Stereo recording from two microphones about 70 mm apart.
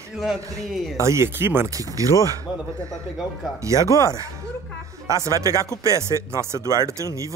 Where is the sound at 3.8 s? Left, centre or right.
Left.